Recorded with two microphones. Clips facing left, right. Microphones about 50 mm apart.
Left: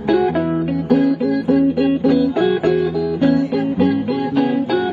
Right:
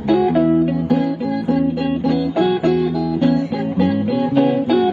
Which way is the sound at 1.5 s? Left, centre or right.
Centre.